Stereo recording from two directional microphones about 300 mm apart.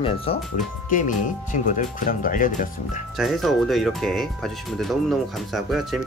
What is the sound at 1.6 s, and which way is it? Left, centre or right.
Speech, left.